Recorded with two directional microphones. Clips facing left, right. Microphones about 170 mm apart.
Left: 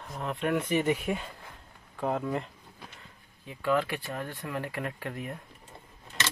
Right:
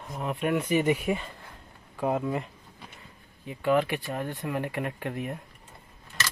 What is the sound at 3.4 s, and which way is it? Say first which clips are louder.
Speech: right 3 dB; 15° right (ahead or behind).